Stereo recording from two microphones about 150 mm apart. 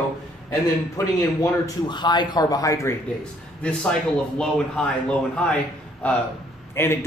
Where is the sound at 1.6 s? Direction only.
30° left (ahead or behind).